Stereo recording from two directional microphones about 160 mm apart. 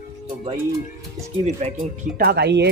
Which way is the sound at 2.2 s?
85° right.